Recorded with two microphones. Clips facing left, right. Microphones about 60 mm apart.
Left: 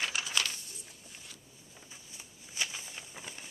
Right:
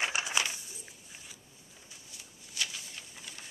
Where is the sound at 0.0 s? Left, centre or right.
Right.